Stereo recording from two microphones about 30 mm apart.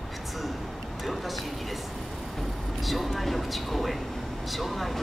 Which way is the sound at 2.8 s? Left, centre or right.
Centre.